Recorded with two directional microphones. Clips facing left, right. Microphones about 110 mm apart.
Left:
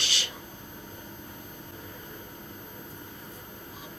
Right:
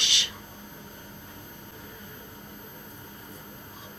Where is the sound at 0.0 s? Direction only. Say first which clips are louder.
Even; 40° left (ahead or behind).